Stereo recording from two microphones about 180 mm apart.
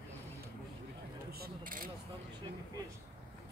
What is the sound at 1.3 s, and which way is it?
Mechanisms, 60° right (ahead or behind).